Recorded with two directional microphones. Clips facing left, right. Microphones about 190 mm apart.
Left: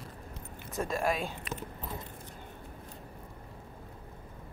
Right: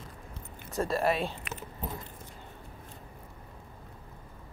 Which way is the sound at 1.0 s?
5° right (ahead or behind).